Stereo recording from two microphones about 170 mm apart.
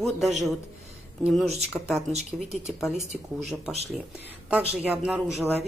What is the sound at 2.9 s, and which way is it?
Speech, 40° right (ahead or behind).